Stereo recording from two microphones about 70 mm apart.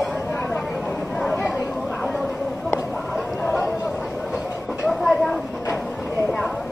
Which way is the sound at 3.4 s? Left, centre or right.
Left.